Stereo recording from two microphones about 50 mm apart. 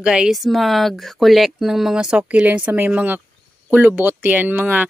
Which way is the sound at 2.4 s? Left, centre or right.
Right.